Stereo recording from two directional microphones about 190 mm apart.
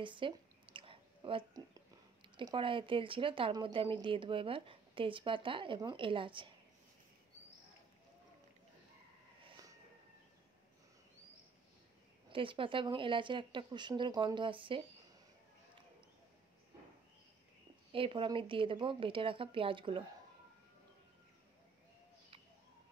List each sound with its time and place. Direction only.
0.0 s a sound: 25° right (ahead or behind)
2.3 s a woman's voice: 25° right (ahead or behind)
12.3 s a woman's voice: 25° right (ahead or behind)
17.9 s a woman's voice: 25° right (ahead or behind)